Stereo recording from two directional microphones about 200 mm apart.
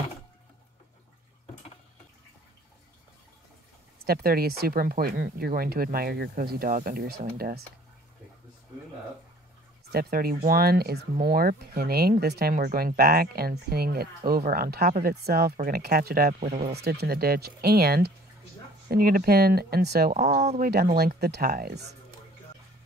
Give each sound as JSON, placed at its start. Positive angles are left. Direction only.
{"t": 4.0, "sound": "speech", "side_deg": -50}
{"t": 9.9, "sound": "speech", "side_deg": -50}